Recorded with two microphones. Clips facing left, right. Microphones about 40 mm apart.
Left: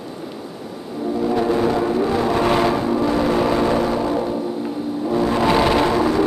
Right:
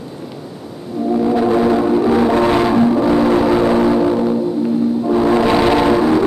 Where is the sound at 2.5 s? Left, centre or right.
Centre.